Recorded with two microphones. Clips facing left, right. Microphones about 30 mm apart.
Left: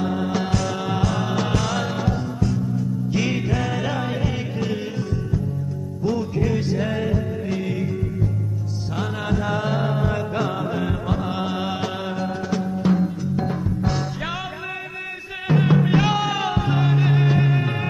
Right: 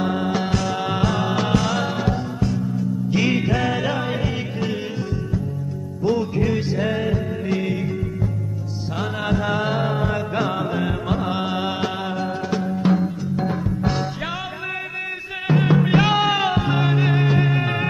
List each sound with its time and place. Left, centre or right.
0.0 s music: centre
6.0 s music: centre
15.4 s music: centre
15.8 s music: centre